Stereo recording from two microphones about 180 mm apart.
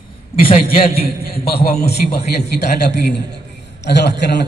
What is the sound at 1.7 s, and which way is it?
A man's voice, 60° left (ahead or behind).